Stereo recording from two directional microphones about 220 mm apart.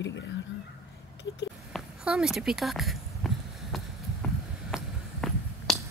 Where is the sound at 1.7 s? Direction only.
Centre (ahead or behind).